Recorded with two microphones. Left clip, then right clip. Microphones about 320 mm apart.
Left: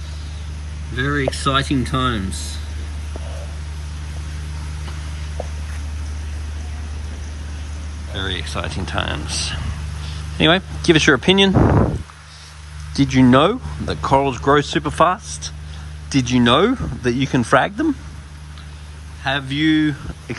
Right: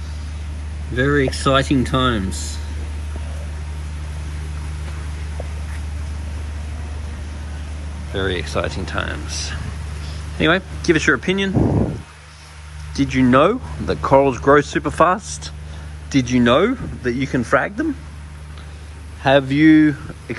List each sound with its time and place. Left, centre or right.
0.9 s speech: centre
2.3 s speech: centre
8.1 s speech: centre
10.3 s speech: centre
11.5 s speech: right
12.9 s speech: centre
19.2 s speech: centre